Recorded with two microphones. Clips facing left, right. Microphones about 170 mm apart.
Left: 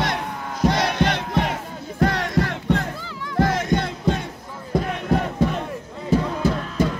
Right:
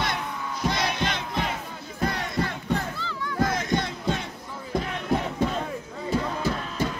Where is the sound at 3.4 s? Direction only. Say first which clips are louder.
Left 5 dB; 60° left (ahead or behind).